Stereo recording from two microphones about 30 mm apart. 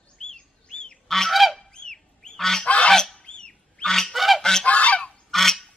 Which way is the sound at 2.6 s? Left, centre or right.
Left.